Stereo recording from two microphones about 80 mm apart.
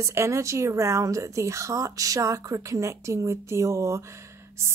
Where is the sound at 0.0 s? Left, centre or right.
Right.